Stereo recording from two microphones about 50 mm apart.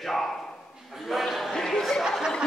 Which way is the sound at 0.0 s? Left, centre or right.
Centre.